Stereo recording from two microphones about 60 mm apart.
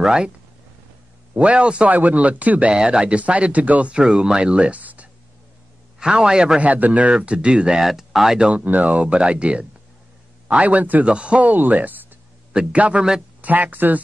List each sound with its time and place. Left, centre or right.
1.3 s speech: right
3.9 s speech: centre
5.9 s a man's voice: centre
7.8 s speech: centre
8.5 s speech: right
12.5 s speech: right